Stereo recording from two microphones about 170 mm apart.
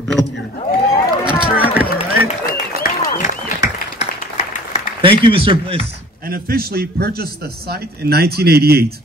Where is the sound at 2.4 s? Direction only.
60° left (ahead or behind).